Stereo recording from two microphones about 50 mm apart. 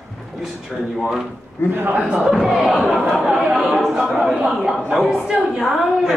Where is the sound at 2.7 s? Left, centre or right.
Centre.